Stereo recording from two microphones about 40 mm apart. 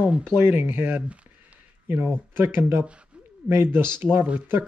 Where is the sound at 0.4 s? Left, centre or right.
Right.